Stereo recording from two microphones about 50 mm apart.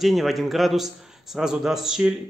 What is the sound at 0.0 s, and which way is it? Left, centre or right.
A man's voice, centre.